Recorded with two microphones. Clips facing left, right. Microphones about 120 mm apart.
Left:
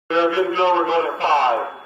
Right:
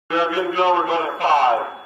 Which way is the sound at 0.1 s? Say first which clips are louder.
Left 2 dB; 25° left (ahead or behind).